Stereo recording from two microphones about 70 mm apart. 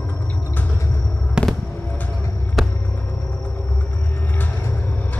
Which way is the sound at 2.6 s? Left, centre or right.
Centre.